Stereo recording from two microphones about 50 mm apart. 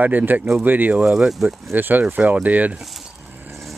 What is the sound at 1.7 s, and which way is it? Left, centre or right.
Speech, right.